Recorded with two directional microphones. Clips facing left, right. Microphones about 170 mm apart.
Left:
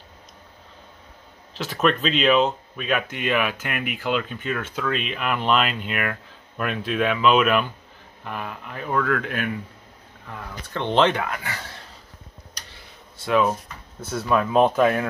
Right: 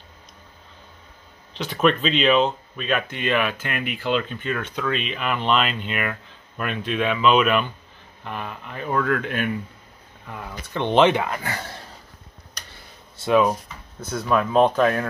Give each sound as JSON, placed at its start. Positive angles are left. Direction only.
{"t": 1.5, "sound": "speech", "side_deg": 0}
{"t": 10.2, "sound": "speech", "side_deg": -10}
{"t": 11.2, "sound": "speech", "side_deg": -30}
{"t": 13.2, "sound": "speech", "side_deg": -15}
{"t": 14.1, "sound": "speech", "side_deg": 5}